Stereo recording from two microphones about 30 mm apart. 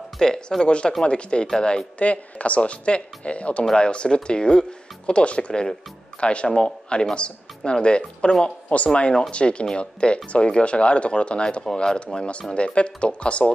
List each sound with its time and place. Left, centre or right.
0.2 s speech: centre
0.7 s speech: left
2.0 s speech: left
3.7 s speech: left
5.5 s speech: left
6.2 s speech: left
8.6 s speech: left
12.5 s speech: left